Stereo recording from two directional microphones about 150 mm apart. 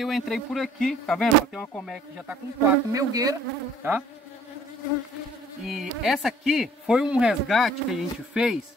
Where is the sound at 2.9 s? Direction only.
25° right (ahead or behind).